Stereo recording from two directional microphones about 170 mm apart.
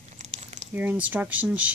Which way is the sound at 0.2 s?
45° right (ahead or behind).